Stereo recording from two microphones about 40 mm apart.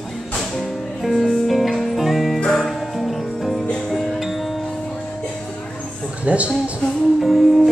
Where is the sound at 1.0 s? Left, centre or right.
Centre.